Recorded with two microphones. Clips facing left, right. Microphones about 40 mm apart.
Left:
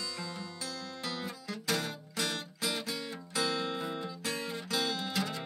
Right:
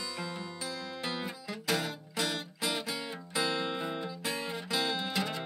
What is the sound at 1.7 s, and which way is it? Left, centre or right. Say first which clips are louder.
Music: right 2 dB; centre.